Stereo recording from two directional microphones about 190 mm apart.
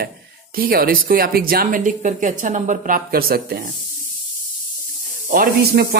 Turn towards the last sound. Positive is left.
turn(degrees=-50)  # may be behind; listen again after turning